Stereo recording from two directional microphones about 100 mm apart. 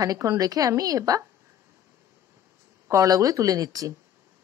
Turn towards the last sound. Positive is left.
turn(degrees=-35)  # may be behind; listen again after turning